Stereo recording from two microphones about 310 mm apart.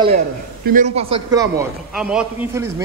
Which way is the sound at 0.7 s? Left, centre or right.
Right.